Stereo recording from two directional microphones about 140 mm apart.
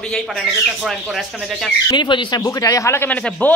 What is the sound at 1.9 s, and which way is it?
Speech, 35° left (ahead or behind).